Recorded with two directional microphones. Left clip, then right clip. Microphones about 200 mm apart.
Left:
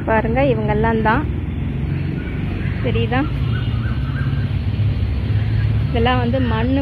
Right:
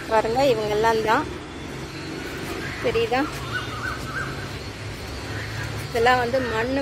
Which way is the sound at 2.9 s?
15° right (ahead or behind).